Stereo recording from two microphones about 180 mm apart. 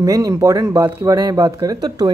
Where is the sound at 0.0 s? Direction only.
20° right (ahead or behind).